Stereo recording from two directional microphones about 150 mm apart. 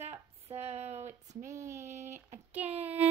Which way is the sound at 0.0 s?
45° right (ahead or behind).